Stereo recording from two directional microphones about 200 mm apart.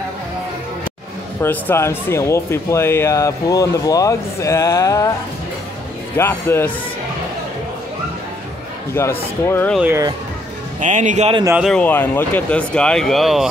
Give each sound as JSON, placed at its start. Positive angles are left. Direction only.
{"t": 1.4, "sound": "speech", "side_deg": 10}
{"t": 6.1, "sound": "speech", "side_deg": 10}
{"t": 9.0, "sound": "speech", "side_deg": 10}
{"t": 9.8, "sound": "speech", "side_deg": -10}
{"t": 10.8, "sound": "a man's voice", "side_deg": -40}
{"t": 11.4, "sound": "speech", "side_deg": -5}
{"t": 11.7, "sound": "speech", "side_deg": 10}